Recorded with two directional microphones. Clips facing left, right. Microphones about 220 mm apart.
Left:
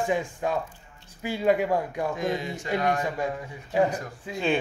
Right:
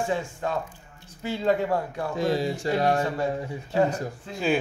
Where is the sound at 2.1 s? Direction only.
35° right (ahead or behind).